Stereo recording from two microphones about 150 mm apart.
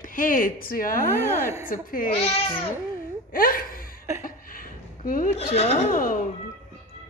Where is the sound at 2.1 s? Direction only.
40° left (ahead or behind).